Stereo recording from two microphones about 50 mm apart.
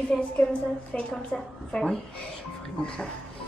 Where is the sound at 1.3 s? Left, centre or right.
Centre.